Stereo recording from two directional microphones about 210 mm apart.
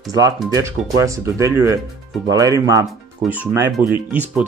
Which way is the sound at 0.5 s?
15° right (ahead or behind).